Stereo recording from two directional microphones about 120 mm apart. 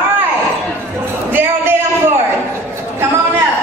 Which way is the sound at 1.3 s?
20° right (ahead or behind).